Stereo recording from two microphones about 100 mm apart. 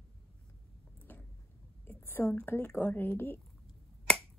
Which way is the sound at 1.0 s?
15° left (ahead or behind).